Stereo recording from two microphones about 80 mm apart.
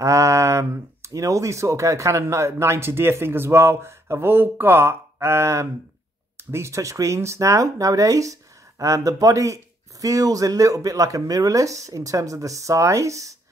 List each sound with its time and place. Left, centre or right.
0.0 s speech: right